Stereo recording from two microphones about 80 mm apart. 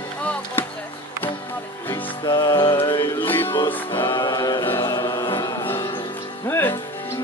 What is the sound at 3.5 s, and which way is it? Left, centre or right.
Music, left.